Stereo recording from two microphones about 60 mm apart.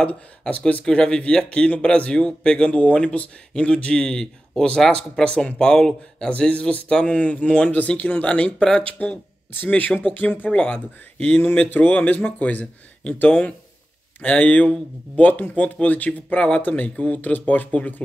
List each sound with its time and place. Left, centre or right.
0.5 s speech: left
0.8 s speech: centre
9.0 s speech: left